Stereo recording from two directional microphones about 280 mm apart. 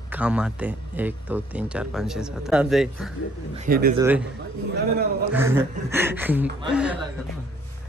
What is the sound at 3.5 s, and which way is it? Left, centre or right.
Speech, right.